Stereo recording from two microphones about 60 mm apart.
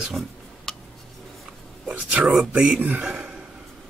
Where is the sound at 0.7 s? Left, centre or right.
Centre.